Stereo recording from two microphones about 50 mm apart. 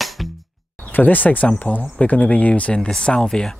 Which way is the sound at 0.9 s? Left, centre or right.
Left.